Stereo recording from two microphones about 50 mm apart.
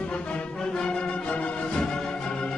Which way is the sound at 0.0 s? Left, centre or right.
Left.